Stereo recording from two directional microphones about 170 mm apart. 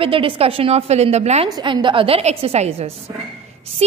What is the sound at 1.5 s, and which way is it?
A woman's voice, 30° right (ahead or behind).